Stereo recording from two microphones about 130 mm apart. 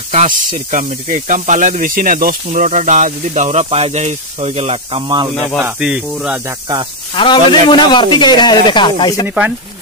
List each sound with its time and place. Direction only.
0.1 s speech: 65° right (ahead or behind); by 5.3 s 35° right (ahead or behind)
5.6 s speech: 10° right (ahead or behind)
7.2 s speech: 35° left (ahead or behind)